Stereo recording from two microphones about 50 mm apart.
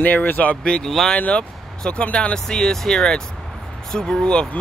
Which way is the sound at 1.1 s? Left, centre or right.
Left.